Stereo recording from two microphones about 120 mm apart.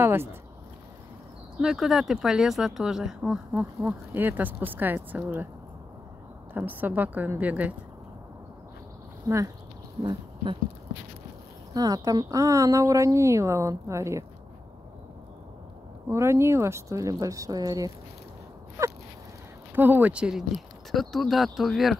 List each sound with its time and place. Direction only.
0.0 s speech: 20° right (ahead or behind)
1.6 s speech: 5° right (ahead or behind)
6.5 s a woman's voice: 15° right (ahead or behind)
10.0 s speech: 45° right (ahead or behind)
11.7 s speech: 30° right (ahead or behind)
16.1 s speech: 20° right (ahead or behind)
18.8 s crow: 25° right (ahead or behind)
19.7 s speech: 15° right (ahead or behind)